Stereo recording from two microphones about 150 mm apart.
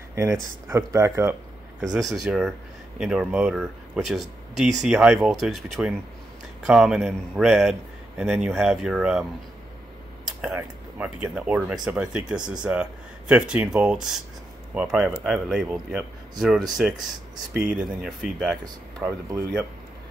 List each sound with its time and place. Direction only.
0.1 s speech: 20° right (ahead or behind)
1.8 s speech: centre (ahead or behind)
10.4 s speech: 10° right (ahead or behind)